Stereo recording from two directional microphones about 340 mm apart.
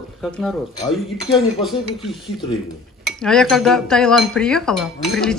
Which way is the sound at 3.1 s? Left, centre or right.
Centre.